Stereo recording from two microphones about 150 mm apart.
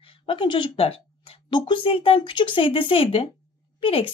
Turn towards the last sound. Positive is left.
turn(degrees=40)  # may be behind; listen again after turning